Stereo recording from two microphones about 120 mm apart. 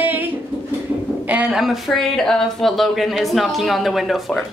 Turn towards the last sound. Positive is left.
turn(degrees=0)  # may be behind; listen again after turning